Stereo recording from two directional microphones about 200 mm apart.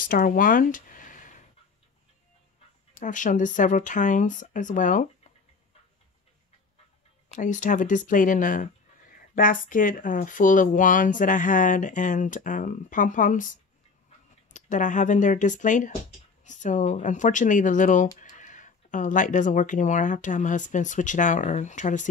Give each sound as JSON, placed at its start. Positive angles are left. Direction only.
{"t": 0.0, "sound": "a sound", "side_deg": 45}
{"t": 3.0, "sound": "speech", "side_deg": 40}
{"t": 7.3, "sound": "speech", "side_deg": 40}